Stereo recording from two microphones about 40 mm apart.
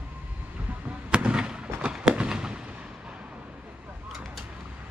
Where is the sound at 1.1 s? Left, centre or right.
Right.